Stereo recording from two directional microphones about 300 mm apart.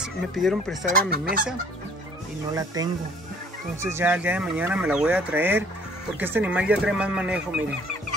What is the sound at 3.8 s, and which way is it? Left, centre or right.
Speech, centre.